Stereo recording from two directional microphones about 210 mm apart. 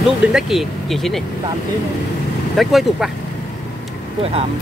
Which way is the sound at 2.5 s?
Centre (ahead or behind).